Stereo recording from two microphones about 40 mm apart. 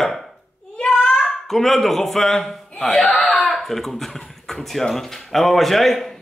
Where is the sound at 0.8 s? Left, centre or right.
Left.